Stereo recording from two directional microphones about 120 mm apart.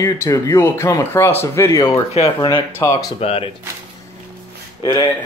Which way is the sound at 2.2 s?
65° left (ahead or behind).